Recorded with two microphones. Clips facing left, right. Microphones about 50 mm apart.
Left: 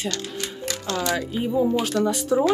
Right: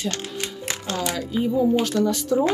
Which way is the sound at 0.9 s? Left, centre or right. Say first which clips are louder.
Even; left.